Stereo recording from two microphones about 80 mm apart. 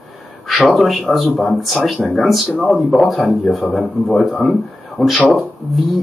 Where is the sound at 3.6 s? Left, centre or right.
Centre.